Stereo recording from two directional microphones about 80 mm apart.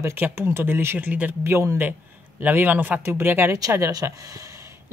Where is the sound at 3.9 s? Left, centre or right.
Right.